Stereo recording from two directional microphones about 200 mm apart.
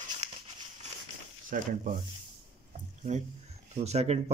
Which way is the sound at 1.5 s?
45° right (ahead or behind).